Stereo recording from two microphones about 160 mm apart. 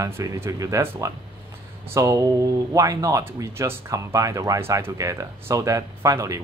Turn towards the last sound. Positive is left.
turn(degrees=-20)  # may be behind; listen again after turning